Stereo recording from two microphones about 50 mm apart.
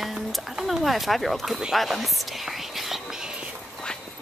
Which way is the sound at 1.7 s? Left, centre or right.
Centre.